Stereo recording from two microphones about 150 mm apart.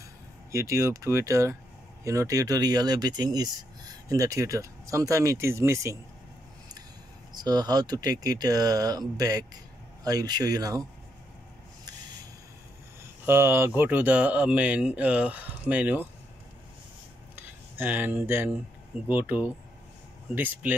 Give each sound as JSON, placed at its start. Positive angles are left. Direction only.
{"t": 0.5, "sound": "speech", "side_deg": -20}
{"t": 7.4, "sound": "speech", "side_deg": -25}
{"t": 13.2, "sound": "speech", "side_deg": -15}
{"t": 17.4, "sound": "speech", "side_deg": -15}